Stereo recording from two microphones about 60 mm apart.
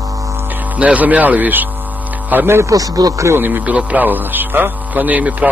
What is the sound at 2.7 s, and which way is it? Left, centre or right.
Speech, right.